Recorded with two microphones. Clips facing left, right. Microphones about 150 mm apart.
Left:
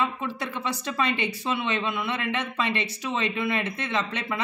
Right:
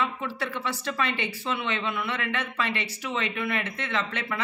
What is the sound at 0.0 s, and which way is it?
A woman's voice, 20° left (ahead or behind).